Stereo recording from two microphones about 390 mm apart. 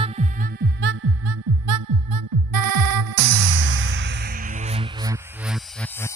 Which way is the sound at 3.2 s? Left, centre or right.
Right.